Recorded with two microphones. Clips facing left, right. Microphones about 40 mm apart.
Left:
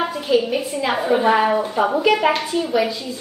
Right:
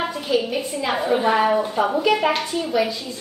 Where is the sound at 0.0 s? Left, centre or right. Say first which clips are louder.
Left 3 dB; centre.